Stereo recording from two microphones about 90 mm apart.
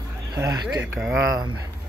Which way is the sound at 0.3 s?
45° right (ahead or behind).